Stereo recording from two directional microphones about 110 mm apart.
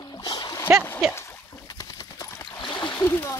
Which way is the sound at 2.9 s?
20° left (ahead or behind).